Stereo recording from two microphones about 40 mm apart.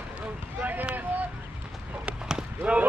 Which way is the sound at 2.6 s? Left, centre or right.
Right.